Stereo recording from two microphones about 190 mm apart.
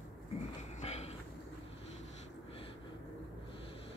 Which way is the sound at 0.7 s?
35° left (ahead or behind).